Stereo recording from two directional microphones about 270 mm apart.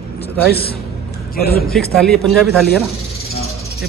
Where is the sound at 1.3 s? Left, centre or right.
Left.